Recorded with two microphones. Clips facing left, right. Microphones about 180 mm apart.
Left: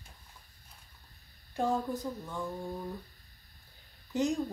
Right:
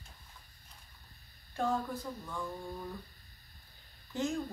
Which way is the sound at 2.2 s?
20° left (ahead or behind).